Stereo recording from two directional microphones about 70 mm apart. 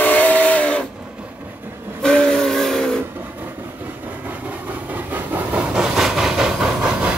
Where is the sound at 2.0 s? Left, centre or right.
Centre.